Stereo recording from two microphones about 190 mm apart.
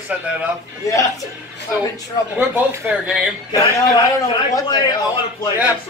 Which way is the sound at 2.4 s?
10° right (ahead or behind).